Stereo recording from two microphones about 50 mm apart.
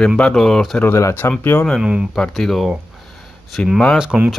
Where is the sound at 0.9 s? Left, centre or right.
Left.